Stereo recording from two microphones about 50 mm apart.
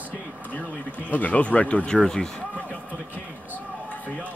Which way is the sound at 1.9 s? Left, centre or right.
Centre.